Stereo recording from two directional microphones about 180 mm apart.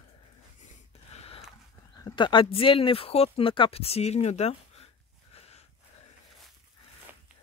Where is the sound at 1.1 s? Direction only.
35° left (ahead or behind).